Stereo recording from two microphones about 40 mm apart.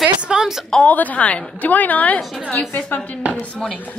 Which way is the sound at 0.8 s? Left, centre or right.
Left.